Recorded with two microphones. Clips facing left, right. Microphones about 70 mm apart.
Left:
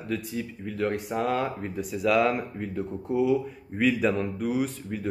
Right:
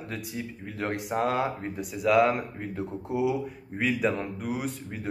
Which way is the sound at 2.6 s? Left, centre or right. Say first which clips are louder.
Left 2 dB; centre.